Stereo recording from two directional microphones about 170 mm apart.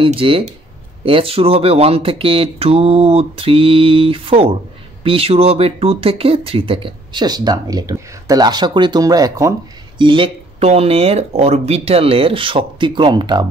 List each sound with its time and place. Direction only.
0.0 s speech: 30° right (ahead or behind)